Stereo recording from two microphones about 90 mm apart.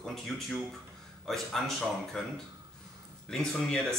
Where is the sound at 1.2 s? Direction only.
5° left (ahead or behind).